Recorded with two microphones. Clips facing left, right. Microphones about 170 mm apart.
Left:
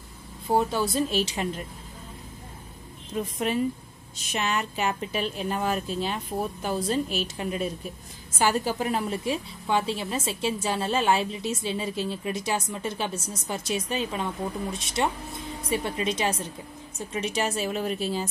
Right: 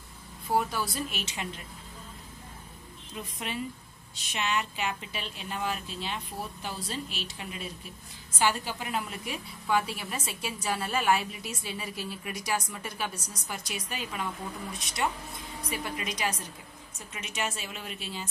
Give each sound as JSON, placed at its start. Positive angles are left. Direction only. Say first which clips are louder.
{"t": 0.5, "sound": "a woman's voice", "louder": "left 5 dB", "side_deg": 25}
{"t": 3.4, "sound": "a woman's voice", "louder": "left 9 dB", "side_deg": 40}